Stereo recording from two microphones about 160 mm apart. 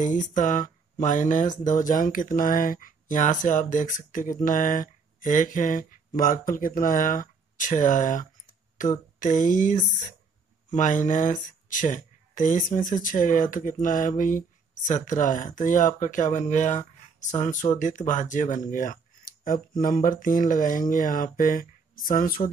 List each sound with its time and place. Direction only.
0.0 s speech: 55° left (ahead or behind)
18.7 s a sound: 55° left (ahead or behind)
19.8 s speech: 60° left (ahead or behind)